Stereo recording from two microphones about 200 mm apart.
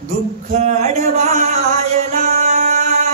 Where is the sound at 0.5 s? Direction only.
35° right (ahead or behind).